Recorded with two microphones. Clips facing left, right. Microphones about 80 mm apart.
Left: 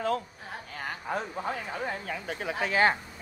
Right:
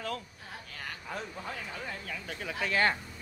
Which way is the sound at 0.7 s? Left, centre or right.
Left.